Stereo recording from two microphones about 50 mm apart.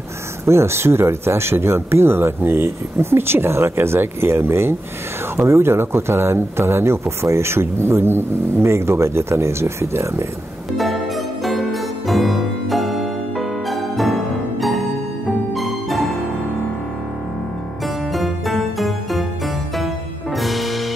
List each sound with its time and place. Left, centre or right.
0.5 s speech: right
12.1 s music: centre
18.1 s music: centre
20.3 s music: centre